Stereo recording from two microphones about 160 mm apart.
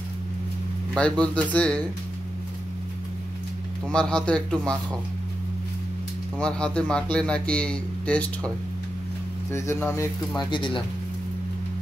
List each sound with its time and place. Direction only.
0.9 s a man's voice: 5° left (ahead or behind)
3.9 s a man's voice: 5° left (ahead or behind)
6.3 s a man's voice: 5° left (ahead or behind)
9.5 s a man's voice: 15° left (ahead or behind)
10.5 s speech: 30° left (ahead or behind)